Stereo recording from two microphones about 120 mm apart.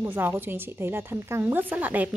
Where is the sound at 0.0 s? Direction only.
15° right (ahead or behind).